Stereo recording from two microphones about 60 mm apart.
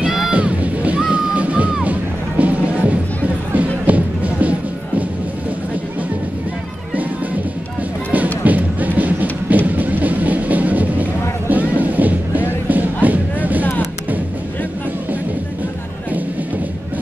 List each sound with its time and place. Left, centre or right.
0.3 s music: right
8.5 s music: right